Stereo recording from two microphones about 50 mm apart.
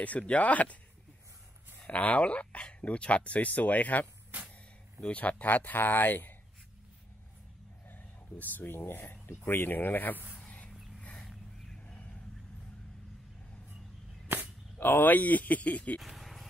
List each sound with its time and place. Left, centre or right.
0.3 s speech: left
1.9 s speech: left
5.1 s speech: left
7.9 s speech: left
10.4 s a sound: left
11.8 s a sound: left
14.3 s cap gun: right
14.8 s speech: left
16.0 s a sound: centre